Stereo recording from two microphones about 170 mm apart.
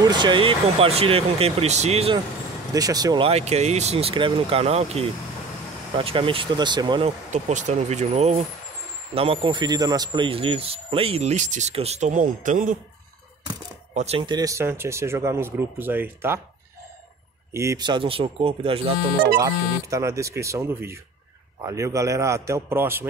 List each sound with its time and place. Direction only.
0.0 s speech: 25° right (ahead or behind)
2.7 s speech: 20° right (ahead or behind)
3.3 s speech: 40° right (ahead or behind)
7.3 s speech: 45° right (ahead or behind)
13.9 s speech: 35° right (ahead or behind); by 16.3 s 10° right (ahead or behind)
17.5 s speech: 15° right (ahead or behind); by 18.9 s 35° right (ahead or behind)
19.4 s speech: 15° right (ahead or behind)